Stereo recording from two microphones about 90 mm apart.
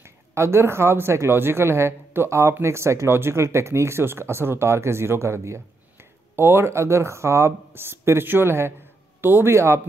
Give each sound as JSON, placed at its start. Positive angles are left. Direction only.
{"t": 0.0, "sound": "speech", "side_deg": -30}